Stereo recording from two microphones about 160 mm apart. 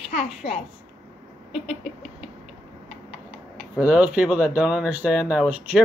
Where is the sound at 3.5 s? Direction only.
5° right (ahead or behind).